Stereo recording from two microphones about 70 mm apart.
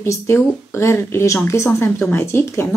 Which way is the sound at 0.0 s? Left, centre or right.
Left.